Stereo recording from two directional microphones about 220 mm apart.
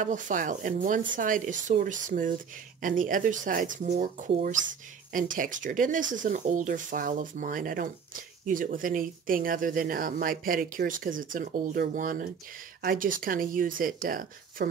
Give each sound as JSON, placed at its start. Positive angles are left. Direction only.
{"t": 0.0, "sound": "speech", "side_deg": -35}